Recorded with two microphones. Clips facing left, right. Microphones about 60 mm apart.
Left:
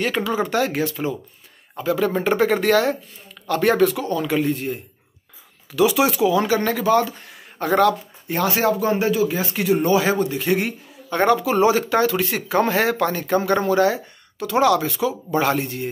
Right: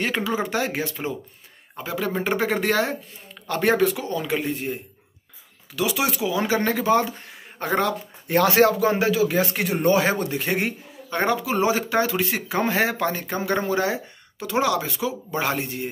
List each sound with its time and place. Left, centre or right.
0.0 s speech: centre
2.0 s speech: centre
5.8 s speech: centre
6.4 s speech: right
8.3 s speech: right
8.8 s speech: right
9.3 s speech: right
11.1 s speech: centre